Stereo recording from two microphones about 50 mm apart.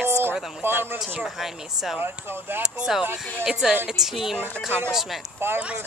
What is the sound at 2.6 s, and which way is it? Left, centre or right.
Speech, centre.